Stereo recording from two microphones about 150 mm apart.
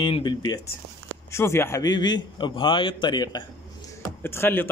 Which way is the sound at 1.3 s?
15° left (ahead or behind).